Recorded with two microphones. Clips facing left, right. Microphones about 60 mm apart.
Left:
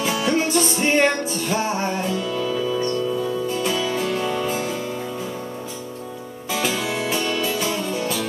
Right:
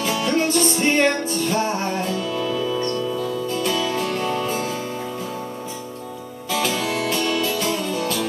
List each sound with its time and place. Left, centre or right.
0.0 s music: centre
6.5 s music: centre